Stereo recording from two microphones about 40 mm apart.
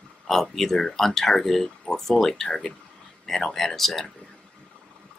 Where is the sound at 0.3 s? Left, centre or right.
Centre.